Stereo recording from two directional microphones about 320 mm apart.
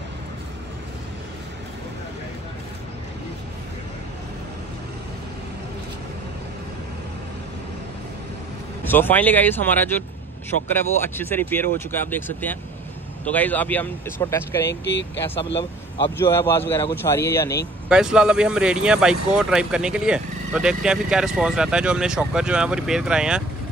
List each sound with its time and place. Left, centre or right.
8.9 s speech: centre
14.7 s speech: left
16.2 s speech: centre
17.8 s speech: centre